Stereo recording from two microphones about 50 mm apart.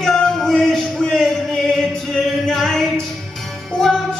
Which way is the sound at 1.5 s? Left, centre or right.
Centre.